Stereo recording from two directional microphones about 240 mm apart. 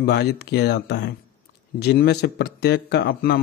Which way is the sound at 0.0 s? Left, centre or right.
Left.